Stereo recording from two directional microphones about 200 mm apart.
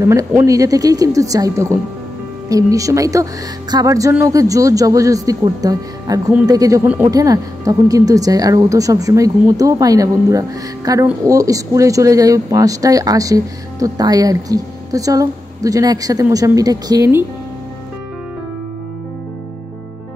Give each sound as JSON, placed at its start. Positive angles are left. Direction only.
{"t": 0.0, "sound": "speech", "side_deg": -15}